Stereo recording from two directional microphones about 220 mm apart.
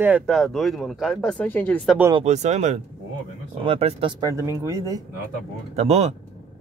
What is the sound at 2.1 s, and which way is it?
Speech, 30° right (ahead or behind).